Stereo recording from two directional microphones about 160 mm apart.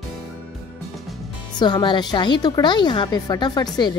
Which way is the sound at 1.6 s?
30° left (ahead or behind).